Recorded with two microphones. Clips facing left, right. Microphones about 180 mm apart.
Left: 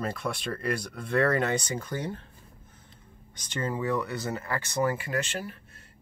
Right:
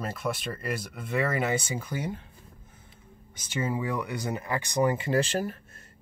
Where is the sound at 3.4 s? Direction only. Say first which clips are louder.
Even; 10° right (ahead or behind).